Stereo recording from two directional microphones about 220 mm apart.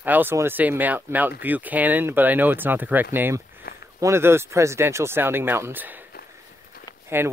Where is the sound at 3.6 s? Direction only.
45° left (ahead or behind).